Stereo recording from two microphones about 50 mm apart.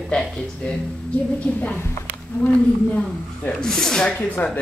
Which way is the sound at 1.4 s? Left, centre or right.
Left.